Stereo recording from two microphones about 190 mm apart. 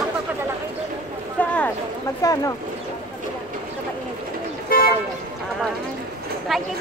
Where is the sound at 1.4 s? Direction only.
5° left (ahead or behind).